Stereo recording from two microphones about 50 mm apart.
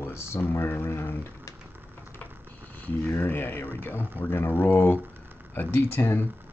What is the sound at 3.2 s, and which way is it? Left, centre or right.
Speech, left.